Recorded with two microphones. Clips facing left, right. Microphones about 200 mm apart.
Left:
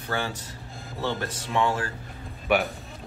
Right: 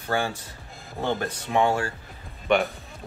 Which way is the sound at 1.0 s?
50° right (ahead or behind).